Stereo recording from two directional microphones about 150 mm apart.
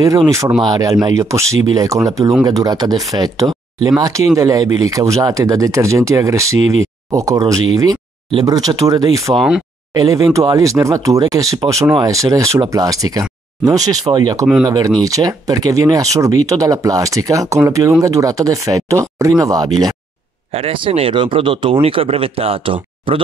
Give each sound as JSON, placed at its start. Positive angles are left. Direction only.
{"t": 0.0, "sound": "speech", "side_deg": -25}
{"t": 8.3, "sound": "speech", "side_deg": -35}
{"t": 8.5, "sound": "speech", "side_deg": -25}
{"t": 20.5, "sound": "speech", "side_deg": -40}